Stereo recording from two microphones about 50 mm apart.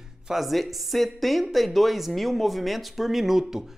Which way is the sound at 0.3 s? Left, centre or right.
Centre.